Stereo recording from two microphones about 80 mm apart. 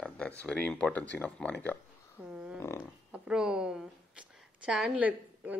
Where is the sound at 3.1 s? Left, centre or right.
Centre.